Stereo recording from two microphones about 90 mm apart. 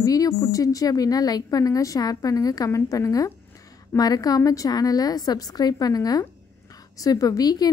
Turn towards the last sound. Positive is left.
turn(degrees=45)  # may be behind; listen again after turning